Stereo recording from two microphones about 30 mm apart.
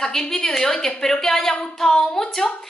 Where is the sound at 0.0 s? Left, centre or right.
Centre.